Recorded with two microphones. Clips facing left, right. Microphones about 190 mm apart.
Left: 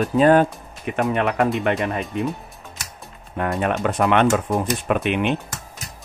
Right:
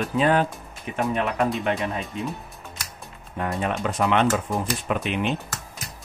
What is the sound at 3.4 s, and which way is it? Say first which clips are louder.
Speech: left 4 dB; 60° left (ahead or behind).